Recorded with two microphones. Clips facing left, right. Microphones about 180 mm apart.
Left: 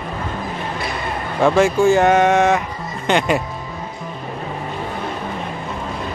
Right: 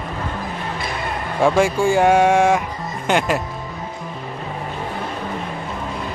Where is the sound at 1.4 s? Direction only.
10° right (ahead or behind).